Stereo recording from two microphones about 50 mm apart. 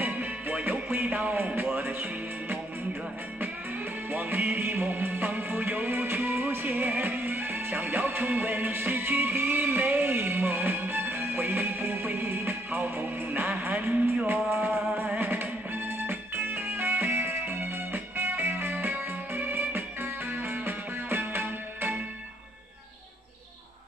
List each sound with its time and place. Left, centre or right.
0.0 s music: right
4.1 s music: right
15.1 s music: right